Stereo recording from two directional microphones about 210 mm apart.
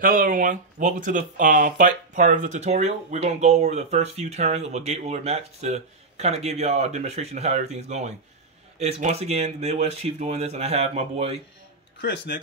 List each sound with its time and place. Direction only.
0.0 s speech: 45° right (ahead or behind)
12.0 s speech: 55° left (ahead or behind)